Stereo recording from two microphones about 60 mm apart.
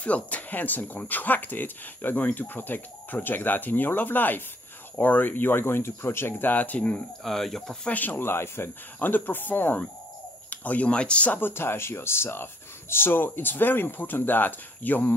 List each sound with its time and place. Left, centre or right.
0.0 s speech: left
6.5 s speech: left
7.2 s speech: centre
7.8 s speech: left
11.3 s speech: left